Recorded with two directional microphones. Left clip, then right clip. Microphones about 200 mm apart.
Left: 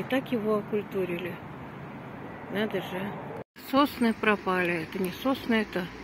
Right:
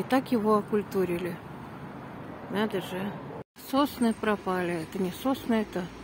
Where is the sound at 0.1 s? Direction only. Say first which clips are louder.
Right 3 dB; 30° right (ahead or behind).